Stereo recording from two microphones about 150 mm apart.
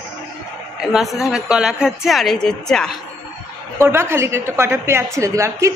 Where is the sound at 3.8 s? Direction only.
15° right (ahead or behind).